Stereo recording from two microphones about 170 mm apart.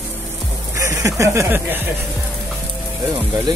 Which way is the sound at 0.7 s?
20° right (ahead or behind).